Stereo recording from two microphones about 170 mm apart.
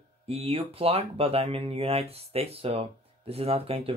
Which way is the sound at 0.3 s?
35° right (ahead or behind).